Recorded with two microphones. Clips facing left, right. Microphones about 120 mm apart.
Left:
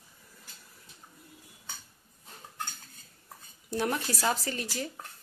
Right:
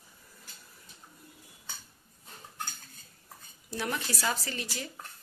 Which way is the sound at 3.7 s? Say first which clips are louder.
Left 4 dB; 45° left (ahead or behind).